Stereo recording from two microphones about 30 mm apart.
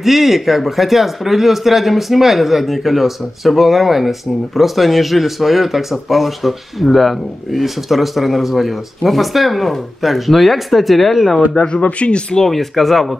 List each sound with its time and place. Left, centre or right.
0.0 s speech: centre
11.7 s speech: left
12.4 s speech: centre